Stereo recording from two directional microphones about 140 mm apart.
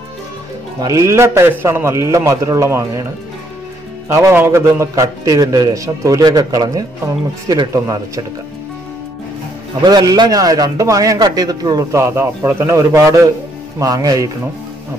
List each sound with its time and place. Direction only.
0.7 s a man's voice: 25° right (ahead or behind)
4.1 s a man's voice: 20° right (ahead or behind)
9.8 s a man's voice: 30° right (ahead or behind)